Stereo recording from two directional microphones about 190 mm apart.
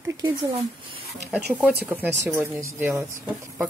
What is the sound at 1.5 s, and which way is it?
Speech, 10° right (ahead or behind).